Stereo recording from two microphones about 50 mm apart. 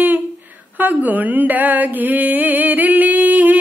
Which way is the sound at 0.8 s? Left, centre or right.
Right.